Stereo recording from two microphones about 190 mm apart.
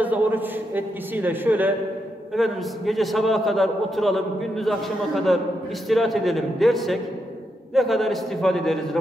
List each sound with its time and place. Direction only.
0.0 s a man's voice: 10° right (ahead or behind)